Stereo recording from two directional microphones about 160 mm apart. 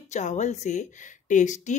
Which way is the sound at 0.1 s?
50° left (ahead or behind).